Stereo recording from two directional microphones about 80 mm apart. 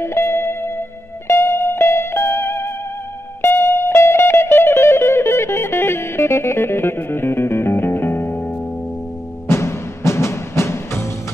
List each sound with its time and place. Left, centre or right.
0.0 s music: left
9.5 s timpani: left